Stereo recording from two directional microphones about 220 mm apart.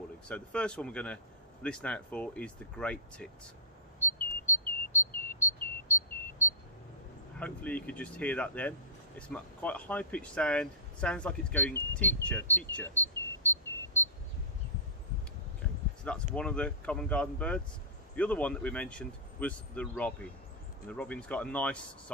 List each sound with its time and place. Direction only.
0.3 s a man's voice: 5° left (ahead or behind)
4.0 s chirp: 10° left (ahead or behind)
7.3 s speech: 5° left (ahead or behind)
16.0 s a man's voice: 5° left (ahead or behind)